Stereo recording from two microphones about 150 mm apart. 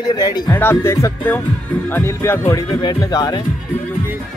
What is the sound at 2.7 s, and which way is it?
Speech, 35° left (ahead or behind).